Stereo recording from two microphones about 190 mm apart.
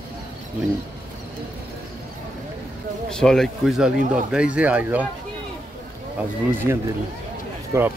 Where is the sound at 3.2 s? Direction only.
5° left (ahead or behind).